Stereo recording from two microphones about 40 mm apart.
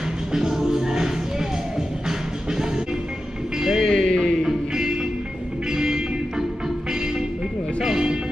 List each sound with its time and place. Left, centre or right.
0.3 s music: centre
3.8 s music: centre
4.4 s music: centre
7.8 s music: centre